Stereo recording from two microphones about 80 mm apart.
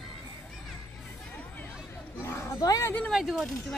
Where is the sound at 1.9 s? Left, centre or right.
Left.